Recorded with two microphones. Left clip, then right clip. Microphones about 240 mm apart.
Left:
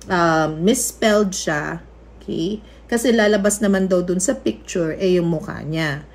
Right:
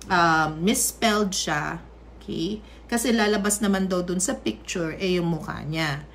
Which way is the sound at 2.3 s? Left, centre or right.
Left.